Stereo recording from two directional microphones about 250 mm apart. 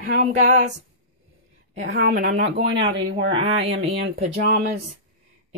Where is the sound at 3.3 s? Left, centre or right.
Right.